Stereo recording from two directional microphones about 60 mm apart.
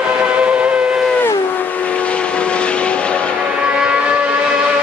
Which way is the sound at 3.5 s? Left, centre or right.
Centre.